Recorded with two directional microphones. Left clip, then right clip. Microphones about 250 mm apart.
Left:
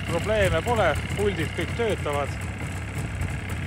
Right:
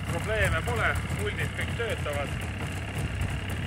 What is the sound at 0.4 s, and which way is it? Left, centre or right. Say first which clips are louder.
Speech: left 5 dB; centre.